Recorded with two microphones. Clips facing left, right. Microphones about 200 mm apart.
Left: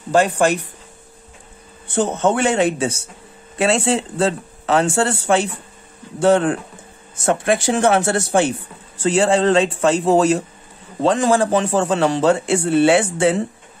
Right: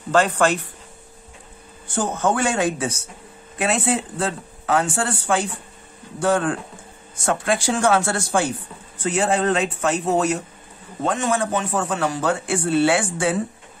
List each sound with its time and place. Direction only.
0.1 s speech: 15° left (ahead or behind)
1.9 s speech: 25° left (ahead or behind)